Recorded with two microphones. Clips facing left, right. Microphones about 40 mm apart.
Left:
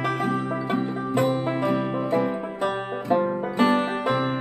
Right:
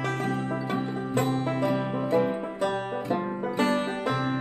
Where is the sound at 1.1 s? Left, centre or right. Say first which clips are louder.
Left 4 dB; left.